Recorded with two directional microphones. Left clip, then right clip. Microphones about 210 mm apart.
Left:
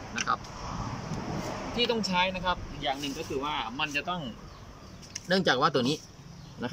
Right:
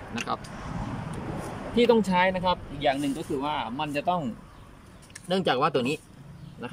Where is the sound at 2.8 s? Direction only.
40° right (ahead or behind).